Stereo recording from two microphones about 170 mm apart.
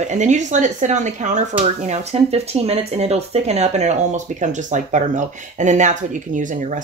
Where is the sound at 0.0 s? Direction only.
45° right (ahead or behind).